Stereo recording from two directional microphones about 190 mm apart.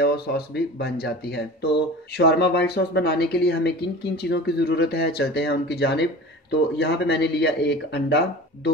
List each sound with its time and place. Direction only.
0.0 s speech: 55° left (ahead or behind)